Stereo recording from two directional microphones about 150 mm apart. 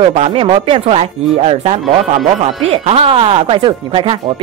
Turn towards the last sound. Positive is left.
turn(degrees=-35)  # may be behind; listen again after turning